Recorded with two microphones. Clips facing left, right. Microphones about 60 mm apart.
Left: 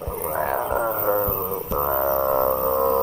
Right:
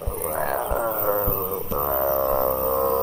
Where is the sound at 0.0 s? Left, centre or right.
Centre.